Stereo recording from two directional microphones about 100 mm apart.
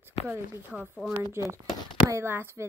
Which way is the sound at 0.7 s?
5° right (ahead or behind).